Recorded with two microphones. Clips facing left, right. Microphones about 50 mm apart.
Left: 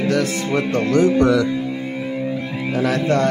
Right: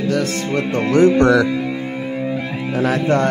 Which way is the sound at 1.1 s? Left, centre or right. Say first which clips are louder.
Right 2 dB; right.